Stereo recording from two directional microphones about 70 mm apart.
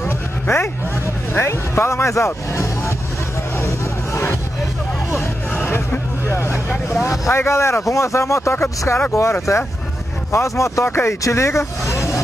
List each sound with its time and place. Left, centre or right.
0.5 s vehicle: left
1.3 s speech: left
3.6 s vehicle: left
5.1 s hubbub: left
7.2 s speech: left
11.9 s vehicle: left